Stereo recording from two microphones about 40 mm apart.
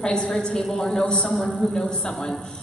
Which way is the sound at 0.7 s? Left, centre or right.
Centre.